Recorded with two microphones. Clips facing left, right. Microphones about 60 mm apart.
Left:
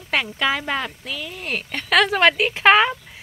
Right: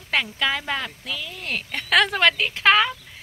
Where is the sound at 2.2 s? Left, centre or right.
Centre.